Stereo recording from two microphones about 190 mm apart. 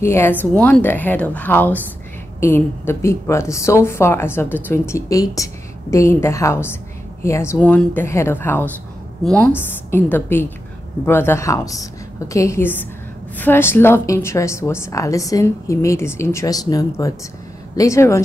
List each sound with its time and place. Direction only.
0.0 s a woman's voice: 10° left (ahead or behind)